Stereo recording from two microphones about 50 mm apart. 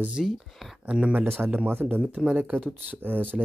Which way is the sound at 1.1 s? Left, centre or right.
Right.